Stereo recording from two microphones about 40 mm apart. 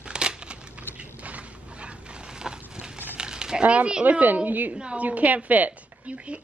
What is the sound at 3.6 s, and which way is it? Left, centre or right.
Speech, right.